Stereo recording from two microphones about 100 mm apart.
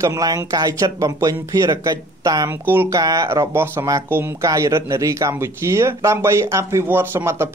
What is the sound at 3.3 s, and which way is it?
Speech, 25° right (ahead or behind).